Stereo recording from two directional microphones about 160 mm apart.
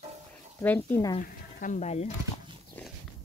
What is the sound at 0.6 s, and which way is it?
Speech, 10° left (ahead or behind).